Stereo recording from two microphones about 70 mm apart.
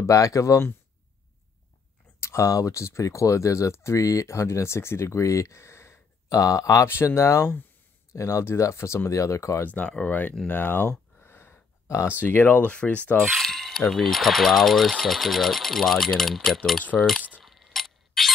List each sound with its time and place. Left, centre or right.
0.0 s speech: left
2.1 s speech: left
6.9 s speech: left
9.6 s speech: left
11.2 s a sound: left
12.2 s speech: left
13.2 s speech: centre
17.4 s a sound: centre